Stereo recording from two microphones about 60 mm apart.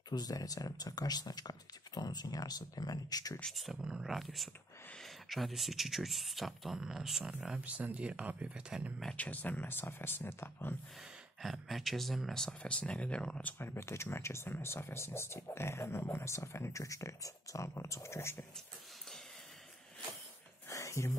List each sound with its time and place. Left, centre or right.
0.2 s speech: left
4.0 s speech: centre
7.6 s speech: right
9.1 s speech: left
11.4 s speech: centre
12.4 s speech: centre
13.6 s speech: left
20.7 s music: left